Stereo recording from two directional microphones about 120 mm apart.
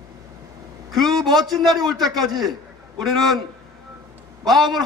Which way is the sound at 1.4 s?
Centre (ahead or behind).